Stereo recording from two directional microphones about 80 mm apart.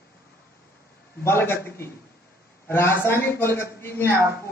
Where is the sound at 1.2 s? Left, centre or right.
Left.